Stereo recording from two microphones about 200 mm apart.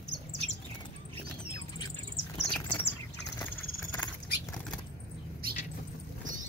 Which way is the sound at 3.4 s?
15° left (ahead or behind).